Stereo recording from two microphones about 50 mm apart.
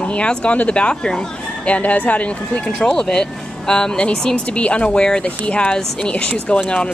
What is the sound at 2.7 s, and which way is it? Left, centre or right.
Speech, centre.